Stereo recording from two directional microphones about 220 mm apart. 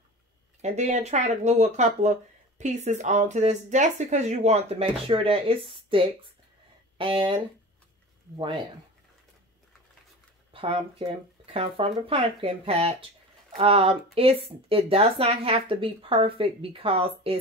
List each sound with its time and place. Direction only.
0.6 s speech: 30° right (ahead or behind)
10.5 s speech: 25° right (ahead or behind)